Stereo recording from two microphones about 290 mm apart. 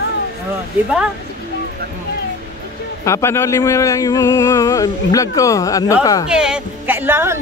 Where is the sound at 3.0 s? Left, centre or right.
Centre.